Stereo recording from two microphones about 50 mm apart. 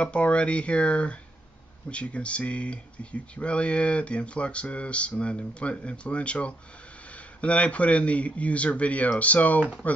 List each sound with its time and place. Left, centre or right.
0.0 s speech: left